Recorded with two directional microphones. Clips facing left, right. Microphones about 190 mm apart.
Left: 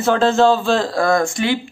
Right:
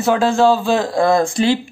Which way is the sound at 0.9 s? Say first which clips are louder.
Right 2 dB; 25° right (ahead or behind).